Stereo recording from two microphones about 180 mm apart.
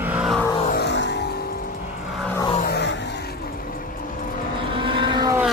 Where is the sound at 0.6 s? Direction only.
65° left (ahead or behind).